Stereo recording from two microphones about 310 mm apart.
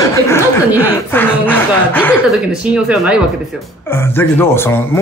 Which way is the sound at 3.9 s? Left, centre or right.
Centre.